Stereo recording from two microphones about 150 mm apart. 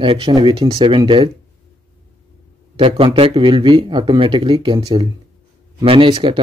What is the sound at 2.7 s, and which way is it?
Speech, 35° right (ahead or behind).